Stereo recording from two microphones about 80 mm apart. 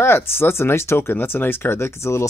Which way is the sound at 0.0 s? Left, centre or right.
Left.